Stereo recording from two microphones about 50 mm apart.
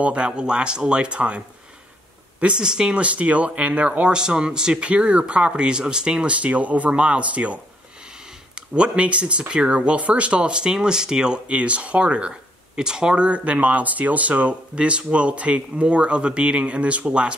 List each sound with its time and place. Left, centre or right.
0.0 s speech: right
2.4 s speech: centre
3.0 s speech: right
4.1 s speech: centre